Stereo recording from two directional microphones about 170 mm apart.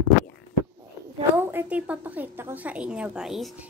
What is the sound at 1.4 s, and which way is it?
A woman's voice, 10° right (ahead or behind).